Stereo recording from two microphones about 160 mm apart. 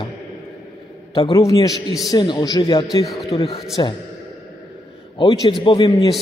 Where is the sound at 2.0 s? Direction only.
25° left (ahead or behind).